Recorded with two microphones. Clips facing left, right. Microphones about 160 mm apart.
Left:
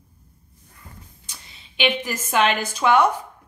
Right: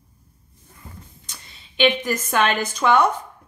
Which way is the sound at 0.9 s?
25° right (ahead or behind).